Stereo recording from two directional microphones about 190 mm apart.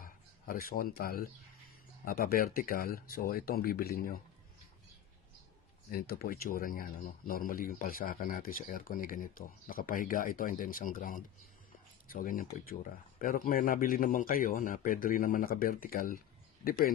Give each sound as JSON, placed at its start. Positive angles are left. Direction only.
{"t": 0.0, "sound": "speech", "side_deg": 50}
{"t": 5.9, "sound": "speech", "side_deg": 50}